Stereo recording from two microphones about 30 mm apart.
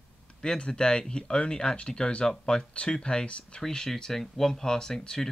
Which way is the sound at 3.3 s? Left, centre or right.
Left.